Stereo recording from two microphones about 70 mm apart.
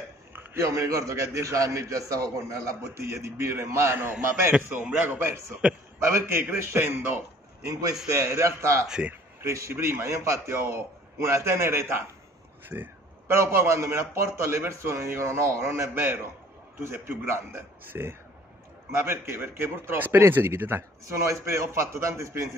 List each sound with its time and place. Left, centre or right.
0.6 s a man's voice: right
8.1 s a man's voice: right
12.7 s speech: centre
13.3 s a man's voice: right